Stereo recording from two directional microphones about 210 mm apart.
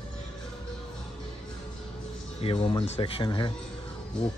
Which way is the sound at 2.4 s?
25° left (ahead or behind).